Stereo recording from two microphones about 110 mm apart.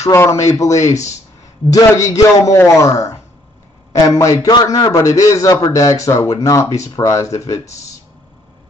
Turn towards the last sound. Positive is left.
turn(degrees=30)  # may be behind; listen again after turning